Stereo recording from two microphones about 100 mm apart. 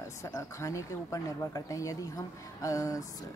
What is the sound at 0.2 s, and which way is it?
A woman's voice, 30° left (ahead or behind).